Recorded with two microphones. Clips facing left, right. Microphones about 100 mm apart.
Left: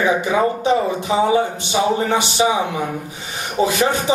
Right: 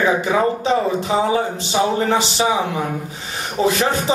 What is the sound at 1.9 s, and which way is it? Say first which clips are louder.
Speech: even; 20° left (ahead or behind).